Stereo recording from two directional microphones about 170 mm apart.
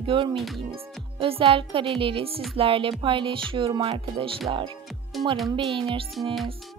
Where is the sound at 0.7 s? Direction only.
30° right (ahead or behind).